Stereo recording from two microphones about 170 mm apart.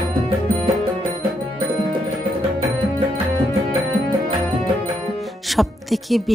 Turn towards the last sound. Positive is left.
turn(degrees=0)  # may be behind; listen again after turning